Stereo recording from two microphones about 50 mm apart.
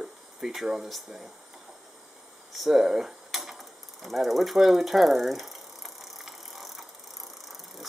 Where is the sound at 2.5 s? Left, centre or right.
Centre.